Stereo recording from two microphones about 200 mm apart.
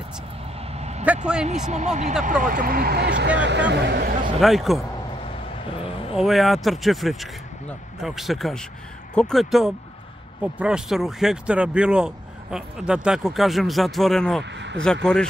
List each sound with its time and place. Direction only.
0.7 s vehicle: 35° right (ahead or behind)
1.4 s speech: 35° right (ahead or behind); by 4.1 s 55° right (ahead or behind)
4.4 s speech: centre (ahead or behind)
6.1 s speech: centre (ahead or behind)
14.4 s speech: 60° right (ahead or behind)